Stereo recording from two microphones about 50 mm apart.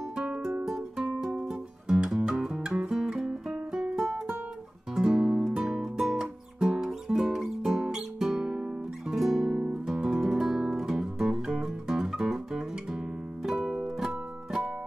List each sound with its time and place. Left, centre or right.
0.7 s music: centre
2.9 s music: centre
9.2 s guitar: centre
13.7 s music: centre